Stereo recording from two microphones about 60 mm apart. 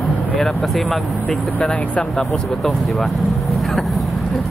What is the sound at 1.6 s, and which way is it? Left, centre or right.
Speech, centre.